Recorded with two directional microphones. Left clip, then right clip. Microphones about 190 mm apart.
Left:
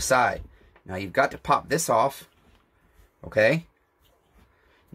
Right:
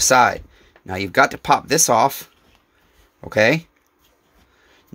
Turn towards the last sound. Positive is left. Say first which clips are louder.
# right 5 dB
turn(degrees=-50)  # may be behind; listen again after turning